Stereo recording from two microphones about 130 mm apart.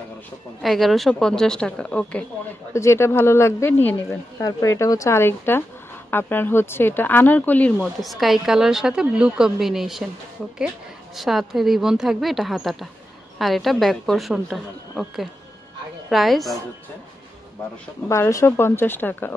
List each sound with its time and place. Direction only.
0.6 s a woman's voice: centre (ahead or behind)
2.7 s speech: 20° left (ahead or behind)
4.4 s speech: 25° left (ahead or behind)
7.8 s a woman's voice: centre (ahead or behind)
11.1 s a woman's voice: centre (ahead or behind)
18.0 s speech: 20° left (ahead or behind)